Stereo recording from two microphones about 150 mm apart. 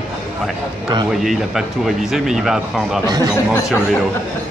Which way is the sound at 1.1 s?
Centre (ahead or behind).